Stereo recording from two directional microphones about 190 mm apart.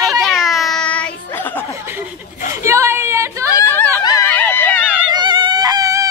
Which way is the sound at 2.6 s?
15° right (ahead or behind).